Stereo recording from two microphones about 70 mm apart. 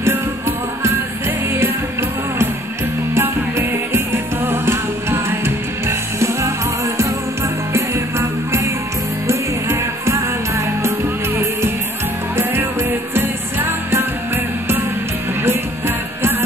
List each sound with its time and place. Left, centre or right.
3.2 s music: right
7.7 s music: right
13.1 s music: right
16.2 s music: right